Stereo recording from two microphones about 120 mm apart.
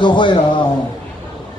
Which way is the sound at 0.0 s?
40° left (ahead or behind).